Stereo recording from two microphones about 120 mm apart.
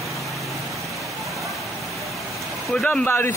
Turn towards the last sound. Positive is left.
turn(degrees=20)  # may be behind; listen again after turning